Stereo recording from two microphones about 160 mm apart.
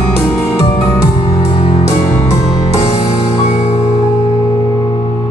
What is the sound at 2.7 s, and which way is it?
Music, 40° left (ahead or behind).